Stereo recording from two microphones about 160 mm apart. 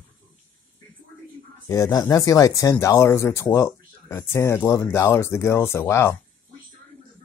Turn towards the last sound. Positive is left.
turn(degrees=15)  # may be behind; listen again after turning